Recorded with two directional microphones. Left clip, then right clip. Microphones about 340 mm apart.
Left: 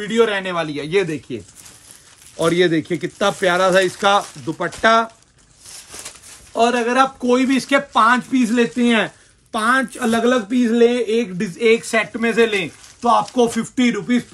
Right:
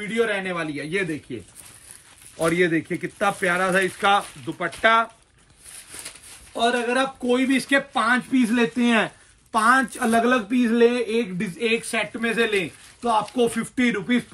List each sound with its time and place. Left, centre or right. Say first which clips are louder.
0.1 s speech: left 6 dB; centre
2.3 s speech: left 5 dB; left
6.5 s speech: left 5 dB; centre